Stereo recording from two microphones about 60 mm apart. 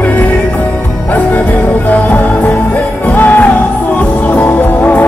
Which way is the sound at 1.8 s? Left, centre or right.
Left.